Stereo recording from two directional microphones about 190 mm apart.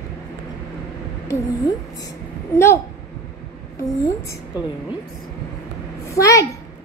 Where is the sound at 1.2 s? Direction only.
20° left (ahead or behind).